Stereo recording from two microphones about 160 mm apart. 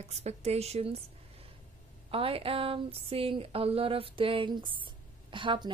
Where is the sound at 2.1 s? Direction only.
35° right (ahead or behind).